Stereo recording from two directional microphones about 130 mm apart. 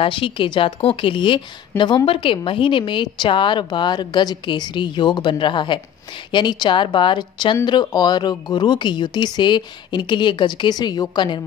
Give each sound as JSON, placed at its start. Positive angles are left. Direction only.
{"t": 0.0, "sound": "speech", "side_deg": 45}